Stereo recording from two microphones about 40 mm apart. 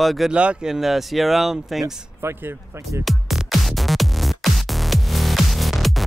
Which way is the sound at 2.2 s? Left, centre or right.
Right.